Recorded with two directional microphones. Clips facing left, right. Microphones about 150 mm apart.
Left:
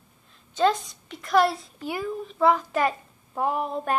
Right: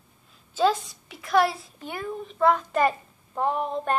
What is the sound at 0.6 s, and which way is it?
A woman's voice, 5° right (ahead or behind).